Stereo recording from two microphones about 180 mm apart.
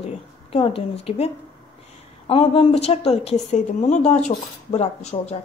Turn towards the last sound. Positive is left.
turn(degrees=40)  # may be behind; listen again after turning